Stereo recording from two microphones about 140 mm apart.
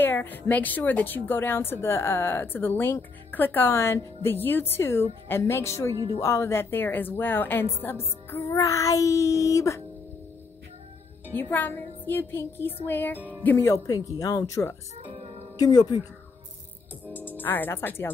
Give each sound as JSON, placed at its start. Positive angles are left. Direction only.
{"t": 0.0, "sound": "a woman's voice", "side_deg": 15}
{"t": 11.3, "sound": "a woman's voice", "side_deg": 15}
{"t": 17.4, "sound": "a woman's voice", "side_deg": 15}